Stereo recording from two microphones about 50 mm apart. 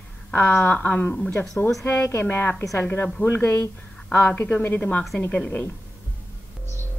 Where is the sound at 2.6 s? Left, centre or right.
Left.